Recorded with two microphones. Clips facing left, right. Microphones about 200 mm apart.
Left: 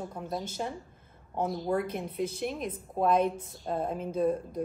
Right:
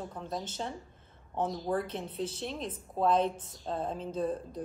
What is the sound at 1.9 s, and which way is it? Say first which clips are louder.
A woman's voice: left 3 dB; 15° left (ahead or behind).